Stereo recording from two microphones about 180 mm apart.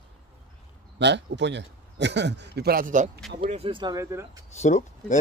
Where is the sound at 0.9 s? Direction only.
75° right (ahead or behind); by 3.1 s 45° right (ahead or behind).